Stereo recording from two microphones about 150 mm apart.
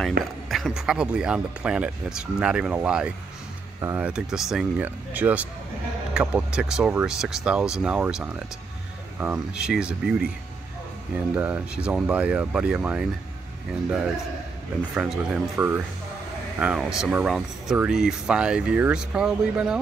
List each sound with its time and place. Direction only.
0.2 s speech: centre (ahead or behind); by 4.1 s 15° right (ahead or behind)
4.1 s speech: 5° right (ahead or behind)
11.1 s speech: 10° right (ahead or behind)
15.0 s speech: 5° right (ahead or behind)